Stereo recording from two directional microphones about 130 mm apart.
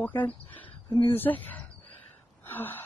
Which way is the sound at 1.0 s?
15° left (ahead or behind).